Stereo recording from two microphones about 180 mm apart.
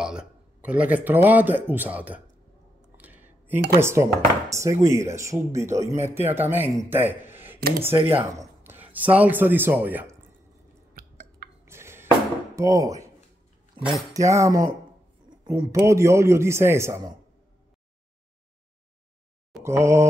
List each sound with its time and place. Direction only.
0.0 s speech: 5° right (ahead or behind)
3.0 s a sound: 10° right (ahead or behind)
3.7 s chopping: 15° right (ahead or behind)
6.9 s a sound: 10° right (ahead or behind)
7.9 s speech: 20° right (ahead or behind)
11.0 s a sound: 50° right (ahead or behind)
11.6 s music: 15° right (ahead or behind)
12.5 s speech: 20° right (ahead or behind)
14.2 s chopping: 15° right (ahead or behind)
19.6 s chopping: 15° right (ahead or behind)